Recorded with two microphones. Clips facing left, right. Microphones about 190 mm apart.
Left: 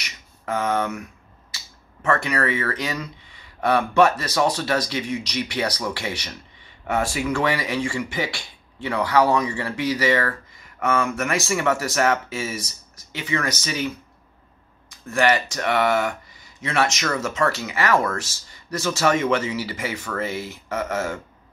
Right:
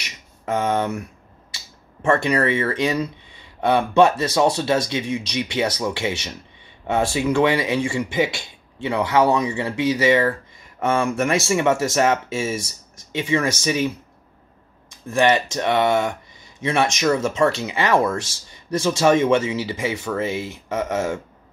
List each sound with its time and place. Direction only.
0.5 s speech: 25° right (ahead or behind)
2.0 s speech: 25° right (ahead or behind)